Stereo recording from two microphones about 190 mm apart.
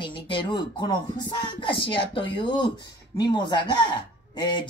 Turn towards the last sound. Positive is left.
turn(degrees=25)  # may be behind; listen again after turning